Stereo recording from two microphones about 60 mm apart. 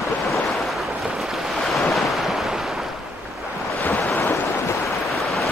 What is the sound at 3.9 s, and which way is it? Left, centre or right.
Waves, left.